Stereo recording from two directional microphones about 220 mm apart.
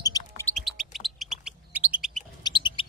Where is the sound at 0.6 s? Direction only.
Centre (ahead or behind).